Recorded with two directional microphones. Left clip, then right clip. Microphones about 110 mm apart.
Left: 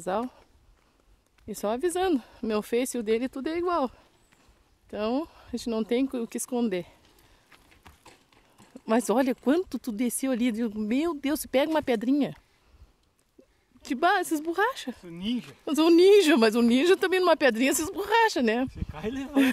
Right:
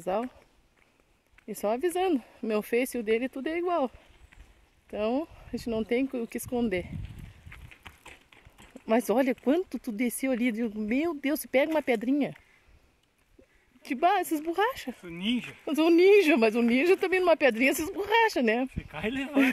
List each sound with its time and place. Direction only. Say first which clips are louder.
0.1 s speech: left 1 dB; 35° left (ahead or behind)
1.4 s speech: even; 25° left (ahead or behind)
4.9 s speech: even; 30° left (ahead or behind)
7.8 s clip-clop: right 4 dB; 10° left (ahead or behind)
8.8 s speech: left 1 dB; 35° left (ahead or behind)
9.9 s speech: even; 30° left (ahead or behind)
13.8 s speech: left 1 dB; 40° left (ahead or behind)
15.6 s speech: left 2 dB; 40° left (ahead or behind)
18.9 s speech: right 2 dB; 35° right (ahead or behind)